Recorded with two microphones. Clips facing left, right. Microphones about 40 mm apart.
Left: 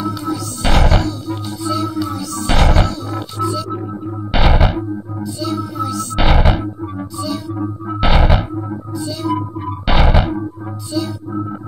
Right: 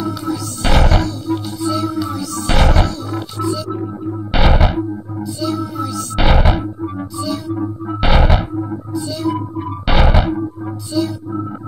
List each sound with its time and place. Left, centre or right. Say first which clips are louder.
0.0 s music: even; centre
6.2 s a sound: right 1 dB; centre
10.9 s music: right 3 dB; centre